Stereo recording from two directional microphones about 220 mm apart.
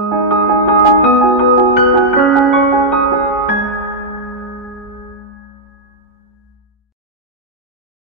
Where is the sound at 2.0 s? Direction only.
Centre (ahead or behind).